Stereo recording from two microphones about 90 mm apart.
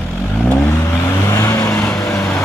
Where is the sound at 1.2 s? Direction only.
40° left (ahead or behind).